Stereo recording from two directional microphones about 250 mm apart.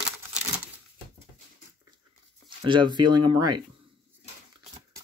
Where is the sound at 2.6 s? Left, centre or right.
Centre.